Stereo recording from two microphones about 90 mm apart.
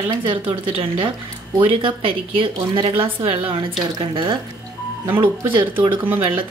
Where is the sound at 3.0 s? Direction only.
85° right.